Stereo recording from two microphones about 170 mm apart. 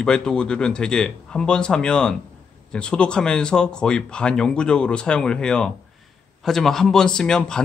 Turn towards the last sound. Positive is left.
turn(degrees=5)  # may be behind; listen again after turning